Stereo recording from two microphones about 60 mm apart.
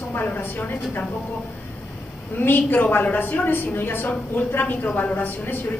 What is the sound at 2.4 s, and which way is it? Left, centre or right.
A woman's voice, left.